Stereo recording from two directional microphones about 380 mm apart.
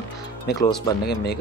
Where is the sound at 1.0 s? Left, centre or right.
Left.